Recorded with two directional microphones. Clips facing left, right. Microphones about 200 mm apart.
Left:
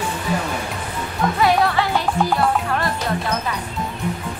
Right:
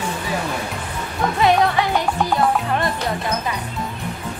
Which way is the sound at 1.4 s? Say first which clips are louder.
Right 1 dB; 20° right (ahead or behind).